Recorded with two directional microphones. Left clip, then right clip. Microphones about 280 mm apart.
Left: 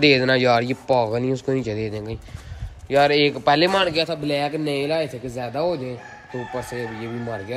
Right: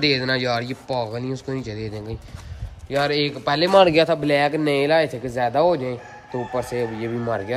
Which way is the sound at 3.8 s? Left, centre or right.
Right.